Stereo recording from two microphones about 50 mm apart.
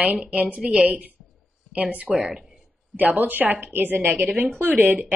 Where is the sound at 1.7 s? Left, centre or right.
Right.